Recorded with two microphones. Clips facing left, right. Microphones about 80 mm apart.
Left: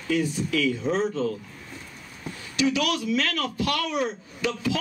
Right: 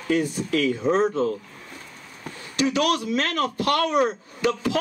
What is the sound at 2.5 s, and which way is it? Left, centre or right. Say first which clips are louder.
A man's voice: right 2 dB; right.